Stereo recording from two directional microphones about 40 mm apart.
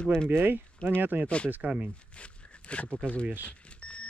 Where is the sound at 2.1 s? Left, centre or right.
Left.